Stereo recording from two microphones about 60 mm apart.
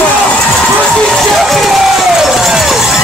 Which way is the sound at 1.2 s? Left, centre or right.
Centre.